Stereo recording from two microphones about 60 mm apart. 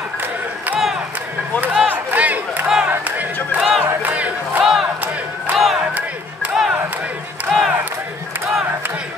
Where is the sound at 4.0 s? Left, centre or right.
Right.